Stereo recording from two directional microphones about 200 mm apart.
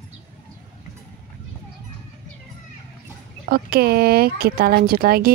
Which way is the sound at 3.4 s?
50° right (ahead or behind).